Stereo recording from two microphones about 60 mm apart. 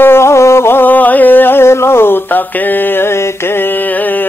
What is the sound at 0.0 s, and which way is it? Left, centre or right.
Music, left.